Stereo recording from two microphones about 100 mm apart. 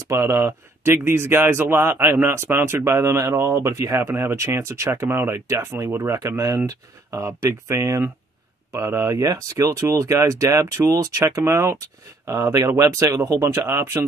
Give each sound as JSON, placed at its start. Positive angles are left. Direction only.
{"t": 0.1, "sound": "speech", "side_deg": -25}